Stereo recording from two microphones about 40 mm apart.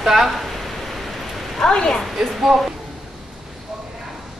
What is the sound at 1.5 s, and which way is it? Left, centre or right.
Speech, centre.